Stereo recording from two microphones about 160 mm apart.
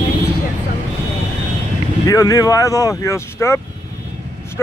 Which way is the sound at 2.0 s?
20° left (ahead or behind).